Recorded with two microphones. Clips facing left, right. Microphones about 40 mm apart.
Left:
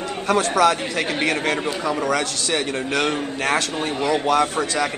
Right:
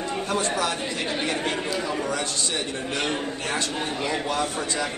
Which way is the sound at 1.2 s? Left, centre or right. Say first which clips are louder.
Left 6 dB; left.